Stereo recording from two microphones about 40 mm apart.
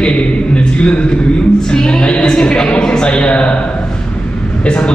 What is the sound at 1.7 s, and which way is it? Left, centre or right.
Music, centre.